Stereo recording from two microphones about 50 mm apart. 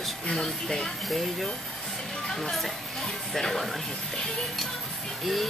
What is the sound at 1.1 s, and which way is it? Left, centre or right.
Speech, centre.